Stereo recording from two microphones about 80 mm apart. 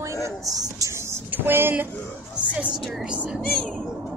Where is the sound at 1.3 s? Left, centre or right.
Right.